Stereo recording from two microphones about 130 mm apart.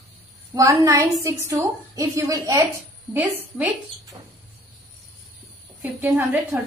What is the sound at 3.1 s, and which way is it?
Speech, 15° right (ahead or behind).